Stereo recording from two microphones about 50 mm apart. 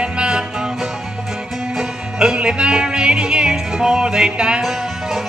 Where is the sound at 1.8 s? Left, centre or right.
Centre.